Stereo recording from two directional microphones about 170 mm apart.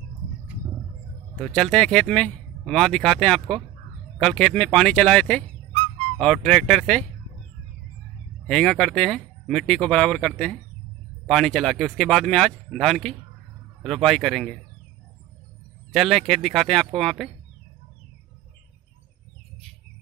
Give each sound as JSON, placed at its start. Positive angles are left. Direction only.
{"t": 1.3, "sound": "speech", "side_deg": 5}
{"t": 5.7, "sound": "squawk", "side_deg": -40}
{"t": 6.1, "sound": "speech", "side_deg": 5}
{"t": 8.5, "sound": "speech", "side_deg": 5}
{"t": 15.9, "sound": "speech", "side_deg": 0}